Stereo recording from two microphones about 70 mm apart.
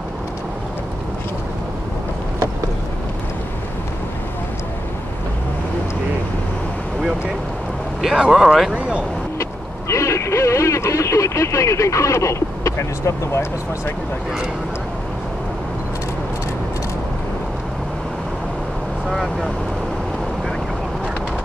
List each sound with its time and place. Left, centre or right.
8.2 s speech: centre
8.7 s speech: centre
9.4 s vehicle: left
19.0 s speech: centre